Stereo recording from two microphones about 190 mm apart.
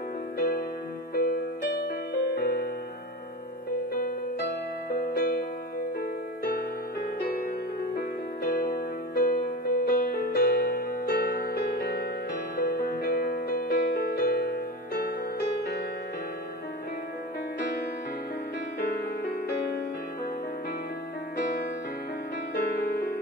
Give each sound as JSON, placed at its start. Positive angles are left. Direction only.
{"t": 0.4, "sound": "music", "side_deg": 50}
{"t": 3.9, "sound": "music", "side_deg": 50}
{"t": 8.5, "sound": "music", "side_deg": 55}
{"t": 18.9, "sound": "music", "side_deg": 55}
{"t": 22.5, "sound": "music", "side_deg": 55}